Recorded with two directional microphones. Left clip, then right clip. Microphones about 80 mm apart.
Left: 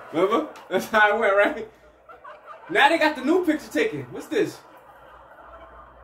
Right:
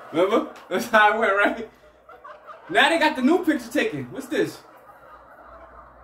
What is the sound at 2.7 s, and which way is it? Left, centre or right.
A woman's voice, right.